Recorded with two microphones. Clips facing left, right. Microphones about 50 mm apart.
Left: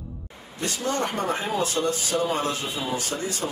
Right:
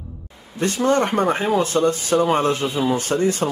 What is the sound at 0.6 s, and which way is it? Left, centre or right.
Speech, right.